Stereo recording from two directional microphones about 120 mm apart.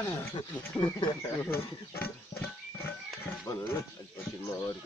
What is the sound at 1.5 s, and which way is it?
Music, 15° left (ahead or behind).